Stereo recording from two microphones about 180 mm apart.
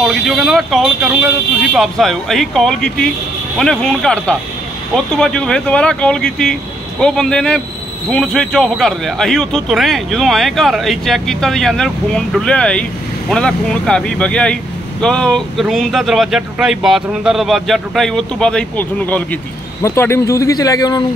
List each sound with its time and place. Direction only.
0.0 s speech: centre (ahead or behind); by 21.0 s 20° left (ahead or behind)